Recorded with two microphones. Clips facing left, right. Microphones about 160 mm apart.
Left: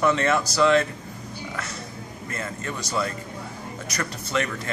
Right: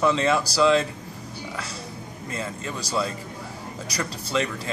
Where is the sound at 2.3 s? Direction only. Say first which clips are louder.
Right 1 dB; 15° right (ahead or behind).